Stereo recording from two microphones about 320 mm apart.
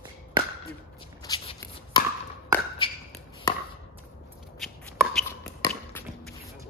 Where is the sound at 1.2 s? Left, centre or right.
Centre.